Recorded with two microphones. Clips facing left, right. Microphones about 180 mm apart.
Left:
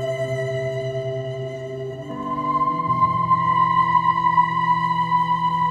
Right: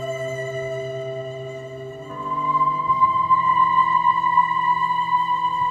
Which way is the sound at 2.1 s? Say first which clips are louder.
Right 1 dB; 35° left (ahead or behind).